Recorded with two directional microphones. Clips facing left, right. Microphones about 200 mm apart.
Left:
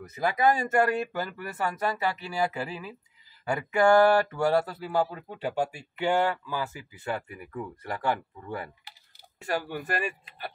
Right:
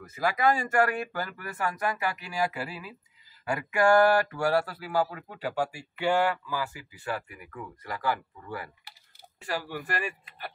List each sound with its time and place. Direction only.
0.0 s speech: 20° left (ahead or behind)